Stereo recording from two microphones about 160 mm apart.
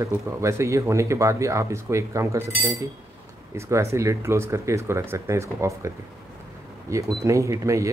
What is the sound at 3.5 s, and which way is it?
Speech, 20° right (ahead or behind).